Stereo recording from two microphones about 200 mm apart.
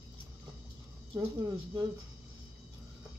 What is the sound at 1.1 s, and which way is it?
Speech, 20° right (ahead or behind).